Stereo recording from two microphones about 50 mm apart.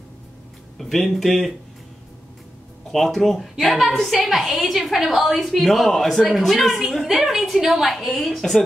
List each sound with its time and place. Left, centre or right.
0.7 s a woman's voice: centre
2.9 s a woman's voice: centre